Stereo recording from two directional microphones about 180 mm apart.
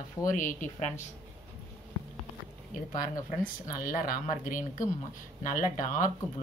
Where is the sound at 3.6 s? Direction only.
50° left (ahead or behind).